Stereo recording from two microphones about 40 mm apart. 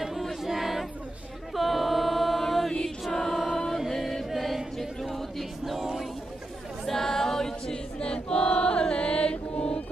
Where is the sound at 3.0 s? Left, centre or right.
Centre.